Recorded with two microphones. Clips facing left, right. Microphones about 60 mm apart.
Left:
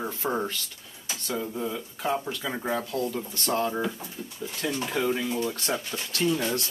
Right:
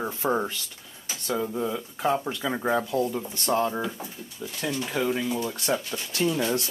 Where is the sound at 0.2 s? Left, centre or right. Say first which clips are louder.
Right 3 dB; centre.